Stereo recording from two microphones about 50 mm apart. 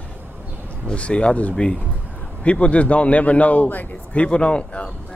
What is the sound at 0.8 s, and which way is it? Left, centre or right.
A man's voice, left.